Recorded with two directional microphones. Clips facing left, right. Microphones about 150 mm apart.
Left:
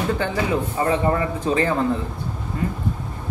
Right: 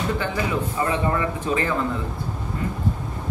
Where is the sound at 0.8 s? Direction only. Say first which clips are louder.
Left 3 dB; 30° left (ahead or behind).